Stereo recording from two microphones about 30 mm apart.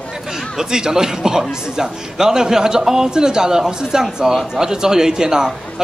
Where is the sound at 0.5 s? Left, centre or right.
Right.